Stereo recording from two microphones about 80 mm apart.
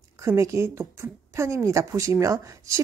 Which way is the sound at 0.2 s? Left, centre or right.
Right.